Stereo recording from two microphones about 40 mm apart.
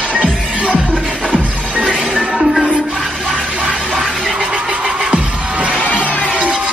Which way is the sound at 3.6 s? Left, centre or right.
Centre.